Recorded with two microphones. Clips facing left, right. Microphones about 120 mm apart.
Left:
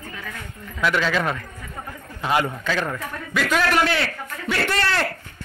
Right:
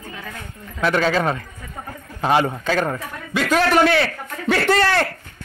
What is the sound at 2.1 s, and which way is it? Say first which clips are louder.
A man's voice: right 4 dB; 30° right (ahead or behind).